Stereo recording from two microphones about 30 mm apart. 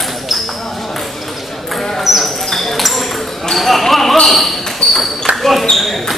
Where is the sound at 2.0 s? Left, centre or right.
Centre.